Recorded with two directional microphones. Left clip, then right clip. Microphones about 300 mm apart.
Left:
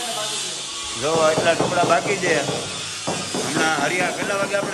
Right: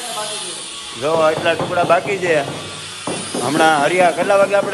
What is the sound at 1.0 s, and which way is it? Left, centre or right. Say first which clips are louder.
Speech: right 3 dB; centre.